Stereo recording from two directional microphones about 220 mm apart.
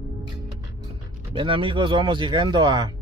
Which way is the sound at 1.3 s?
25° right (ahead or behind).